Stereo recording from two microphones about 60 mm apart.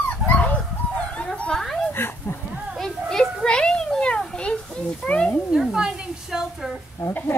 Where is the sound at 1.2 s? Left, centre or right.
Centre.